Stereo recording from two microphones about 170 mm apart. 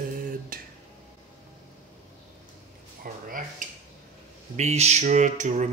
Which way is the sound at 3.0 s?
55° right (ahead or behind).